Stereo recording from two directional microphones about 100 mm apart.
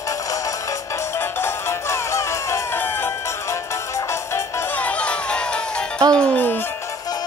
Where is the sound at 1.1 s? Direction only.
25° left (ahead or behind).